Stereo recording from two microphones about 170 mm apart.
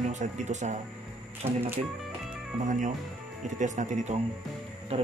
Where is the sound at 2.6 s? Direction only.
50° right (ahead or behind).